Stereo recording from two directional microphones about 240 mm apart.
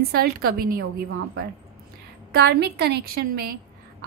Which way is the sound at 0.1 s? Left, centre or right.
Right.